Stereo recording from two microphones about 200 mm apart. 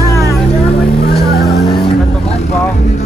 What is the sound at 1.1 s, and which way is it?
Vehicle, 50° left (ahead or behind).